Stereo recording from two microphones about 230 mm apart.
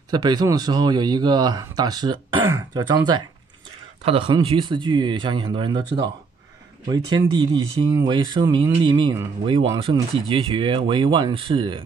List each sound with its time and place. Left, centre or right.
0.1 s speech: centre
4.0 s speech: right